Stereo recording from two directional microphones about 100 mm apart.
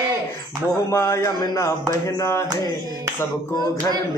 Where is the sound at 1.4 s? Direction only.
35° left (ahead or behind).